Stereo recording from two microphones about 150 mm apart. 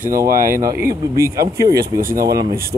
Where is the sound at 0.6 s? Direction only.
20° right (ahead or behind).